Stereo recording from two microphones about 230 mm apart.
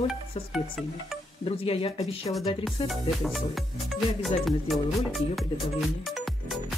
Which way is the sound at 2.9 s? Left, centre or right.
Centre.